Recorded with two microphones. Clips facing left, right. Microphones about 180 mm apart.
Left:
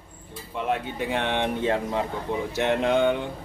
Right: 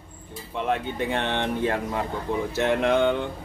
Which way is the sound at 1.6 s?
20° left (ahead or behind).